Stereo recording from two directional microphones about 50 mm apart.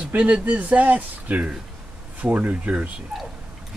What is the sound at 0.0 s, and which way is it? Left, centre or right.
Speech, right.